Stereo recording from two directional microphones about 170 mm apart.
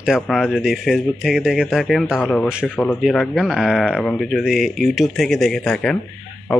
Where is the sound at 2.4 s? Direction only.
5° right (ahead or behind).